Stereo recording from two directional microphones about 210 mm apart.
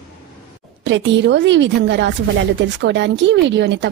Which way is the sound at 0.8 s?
55° right (ahead or behind).